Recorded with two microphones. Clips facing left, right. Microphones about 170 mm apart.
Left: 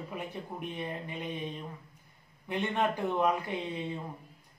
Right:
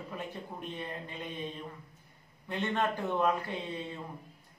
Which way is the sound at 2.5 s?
15° left (ahead or behind).